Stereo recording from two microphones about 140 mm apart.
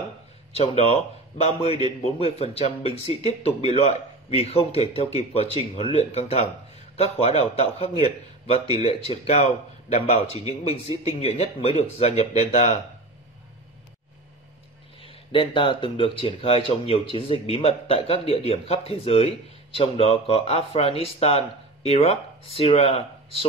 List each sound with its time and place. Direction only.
0.5 s speech: 45° left (ahead or behind)
15.0 s speech: 40° left (ahead or behind)